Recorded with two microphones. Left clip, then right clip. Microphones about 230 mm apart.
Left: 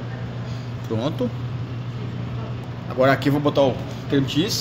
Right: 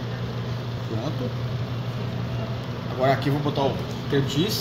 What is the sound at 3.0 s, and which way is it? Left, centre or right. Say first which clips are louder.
Speech: left 5 dB; left.